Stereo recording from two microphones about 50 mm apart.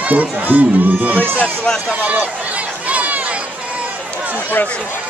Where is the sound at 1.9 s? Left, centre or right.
Right.